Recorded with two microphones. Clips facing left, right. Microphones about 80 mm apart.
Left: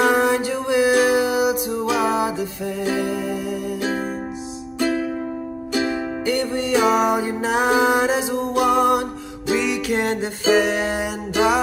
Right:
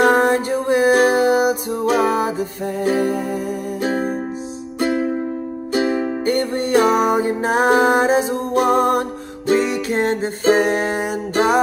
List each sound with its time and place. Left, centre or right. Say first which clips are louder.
0.0 s music: right 3 dB; right
5.7 s music: right 4 dB; right